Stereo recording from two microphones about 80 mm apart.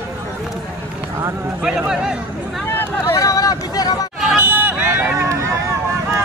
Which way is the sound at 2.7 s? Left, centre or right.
Left.